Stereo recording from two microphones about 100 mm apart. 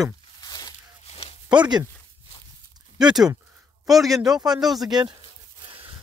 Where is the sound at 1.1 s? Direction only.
90° left.